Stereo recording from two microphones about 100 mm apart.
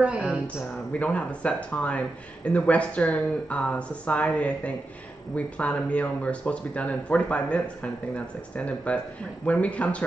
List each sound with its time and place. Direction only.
0.0 s a woman's voice: 10° right (ahead or behind)
0.9 s speech: 15° left (ahead or behind)